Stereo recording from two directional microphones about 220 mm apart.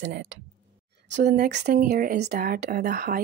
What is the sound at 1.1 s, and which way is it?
Speech, 50° right (ahead or behind).